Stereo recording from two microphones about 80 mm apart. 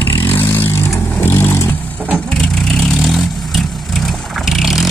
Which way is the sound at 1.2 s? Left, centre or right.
Left.